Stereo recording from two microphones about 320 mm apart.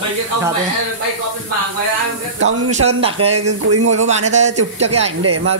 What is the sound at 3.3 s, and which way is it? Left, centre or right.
Speech, right.